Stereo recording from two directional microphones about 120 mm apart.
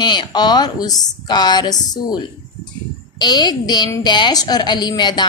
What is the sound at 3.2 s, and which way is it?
A woman's voice, 35° left (ahead or behind).